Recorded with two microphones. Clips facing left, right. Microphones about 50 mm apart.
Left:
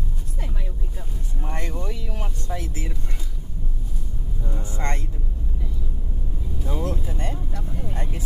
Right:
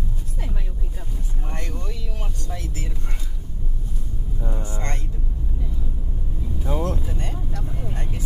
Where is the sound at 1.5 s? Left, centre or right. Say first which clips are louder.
Left 3 dB; centre.